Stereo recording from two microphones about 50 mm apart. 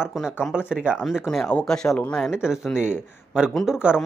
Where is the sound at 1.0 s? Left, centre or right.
Centre.